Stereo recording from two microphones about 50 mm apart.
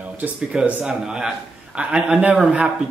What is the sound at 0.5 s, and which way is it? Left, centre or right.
Speech, centre.